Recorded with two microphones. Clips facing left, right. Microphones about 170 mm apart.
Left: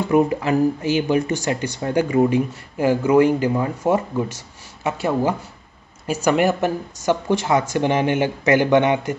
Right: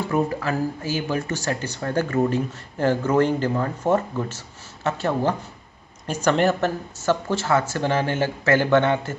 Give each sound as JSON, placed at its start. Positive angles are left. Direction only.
{"t": 0.1, "sound": "speech", "side_deg": 15}